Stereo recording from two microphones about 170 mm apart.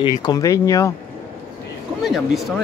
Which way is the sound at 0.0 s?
25° left (ahead or behind).